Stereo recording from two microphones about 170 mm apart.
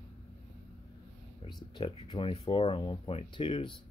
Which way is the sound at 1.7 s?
30° left (ahead or behind).